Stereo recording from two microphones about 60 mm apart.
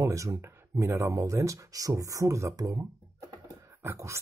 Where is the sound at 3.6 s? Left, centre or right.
Right.